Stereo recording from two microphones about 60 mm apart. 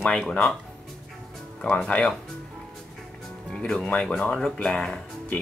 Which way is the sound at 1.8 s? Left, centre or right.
Centre.